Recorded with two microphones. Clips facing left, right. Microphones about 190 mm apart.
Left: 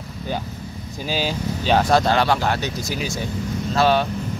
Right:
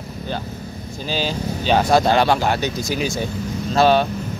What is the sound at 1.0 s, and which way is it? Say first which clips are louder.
Speech: even; 5° left (ahead or behind).